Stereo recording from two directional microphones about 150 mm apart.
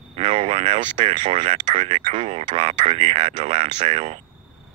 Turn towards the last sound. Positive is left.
turn(degrees=-45)  # may be behind; listen again after turning